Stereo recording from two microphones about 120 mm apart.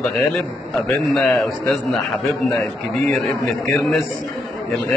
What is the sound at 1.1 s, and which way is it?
Speech, 5° left (ahead or behind).